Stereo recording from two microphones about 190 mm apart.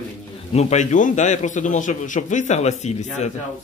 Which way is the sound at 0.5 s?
40° left (ahead or behind).